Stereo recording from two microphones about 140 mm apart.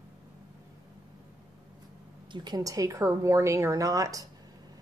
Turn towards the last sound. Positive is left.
turn(degrees=-25)  # may be behind; listen again after turning